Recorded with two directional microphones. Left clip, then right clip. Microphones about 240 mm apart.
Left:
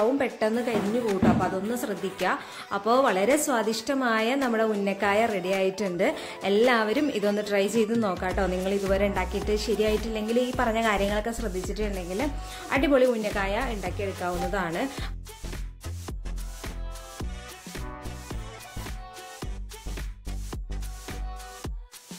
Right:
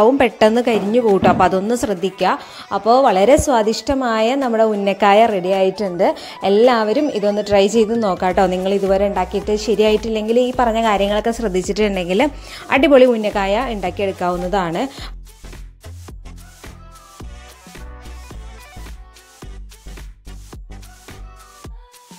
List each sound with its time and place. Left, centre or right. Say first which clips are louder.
0.0 s a woman's voice: right 12 dB; right
17.2 s music: right 1 dB; centre